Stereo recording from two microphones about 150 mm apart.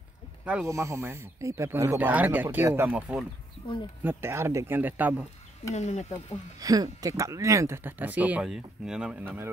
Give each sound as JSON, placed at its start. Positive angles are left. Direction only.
{"t": 0.7, "sound": "speech", "side_deg": -20}
{"t": 5.8, "sound": "speech", "side_deg": 45}
{"t": 6.6, "sound": "speech", "side_deg": -25}